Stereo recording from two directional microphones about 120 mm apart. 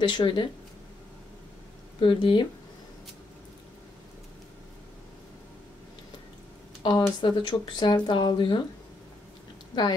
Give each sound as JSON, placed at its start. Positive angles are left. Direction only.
{"t": 0.0, "sound": "speech", "side_deg": 40}
{"t": 2.0, "sound": "speech", "side_deg": 45}
{"t": 6.8, "sound": "speech", "side_deg": 40}